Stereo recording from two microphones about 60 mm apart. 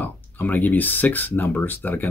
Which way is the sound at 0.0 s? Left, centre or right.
Left.